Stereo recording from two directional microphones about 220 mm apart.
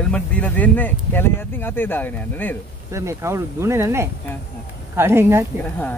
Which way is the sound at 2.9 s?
15° right (ahead or behind).